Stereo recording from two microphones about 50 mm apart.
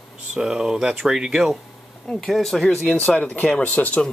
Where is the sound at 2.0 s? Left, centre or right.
Centre.